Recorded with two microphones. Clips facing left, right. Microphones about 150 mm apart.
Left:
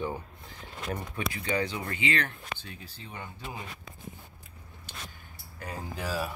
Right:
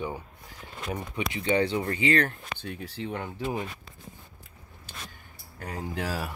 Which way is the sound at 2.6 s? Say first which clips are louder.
Right 10 dB; 65° right (ahead or behind).